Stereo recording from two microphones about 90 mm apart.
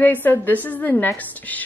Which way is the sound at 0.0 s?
20° left (ahead or behind).